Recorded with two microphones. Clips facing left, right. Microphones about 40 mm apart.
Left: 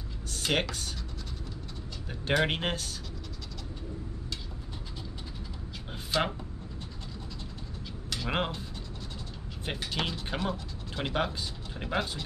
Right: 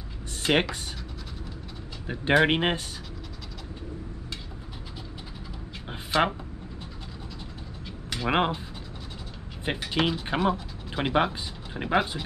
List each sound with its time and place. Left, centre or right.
0.3 s speech: right
2.0 s speech: right
5.9 s a sound: centre
8.1 s speech: right
9.7 s speech: right